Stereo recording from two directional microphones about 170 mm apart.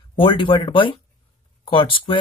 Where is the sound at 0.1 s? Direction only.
30° left (ahead or behind).